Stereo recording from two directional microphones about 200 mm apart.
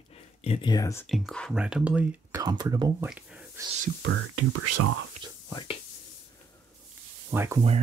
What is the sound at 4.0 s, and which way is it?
Speech, 65° right (ahead or behind).